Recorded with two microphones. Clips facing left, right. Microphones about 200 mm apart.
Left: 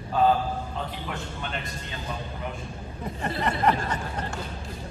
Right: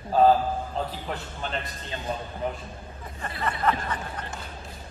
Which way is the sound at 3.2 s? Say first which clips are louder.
Left 3 dB; 25° left (ahead or behind).